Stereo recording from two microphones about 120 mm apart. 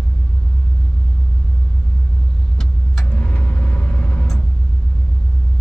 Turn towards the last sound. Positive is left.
turn(degrees=10)  # may be behind; listen again after turning